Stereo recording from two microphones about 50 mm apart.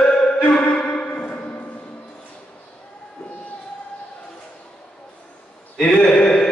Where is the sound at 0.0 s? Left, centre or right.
Centre.